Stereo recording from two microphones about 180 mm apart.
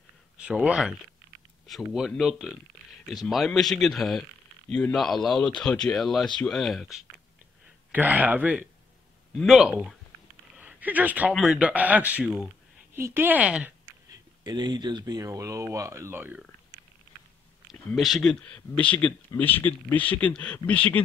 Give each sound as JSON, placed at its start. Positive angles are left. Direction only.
{"t": 0.4, "sound": "a man's voice", "side_deg": -5}
{"t": 14.4, "sound": "speech", "side_deg": -25}
{"t": 17.6, "sound": "speech", "side_deg": 0}